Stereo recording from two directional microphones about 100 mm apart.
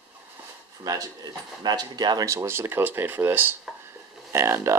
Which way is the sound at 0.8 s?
40° right (ahead or behind).